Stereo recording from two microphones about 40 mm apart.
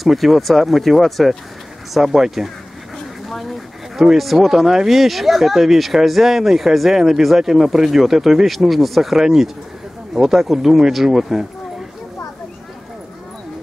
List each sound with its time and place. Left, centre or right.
0.0 s speech: centre
2.0 s speech: centre
3.3 s dog: centre
4.2 s speech: centre
9.2 s speech: centre